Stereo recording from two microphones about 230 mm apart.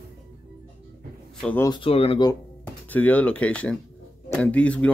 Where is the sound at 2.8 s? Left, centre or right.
Centre.